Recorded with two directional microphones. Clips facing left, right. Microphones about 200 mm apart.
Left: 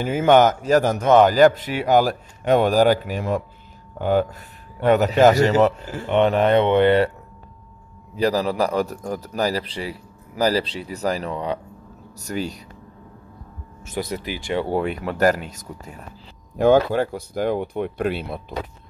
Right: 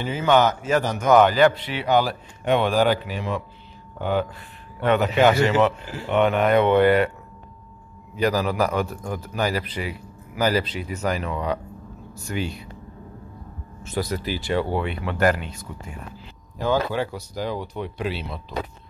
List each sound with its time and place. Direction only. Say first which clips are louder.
0.0 s a man's voice: left 4 dB; 50° left (ahead or behind)
1.0 s speech: even; 30° left (ahead or behind)
1.3 s a man's voice: left 3 dB; 45° left (ahead or behind); by 7.1 s 25° left (ahead or behind)
8.2 s a man's voice: left 1 dB; 30° left (ahead or behind)
14.0 s speech: right 1 dB; 20° left (ahead or behind)
14.7 s a man's voice: left 3 dB; 45° left (ahead or behind)
16.5 s speech: left 7 dB; 55° left (ahead or behind)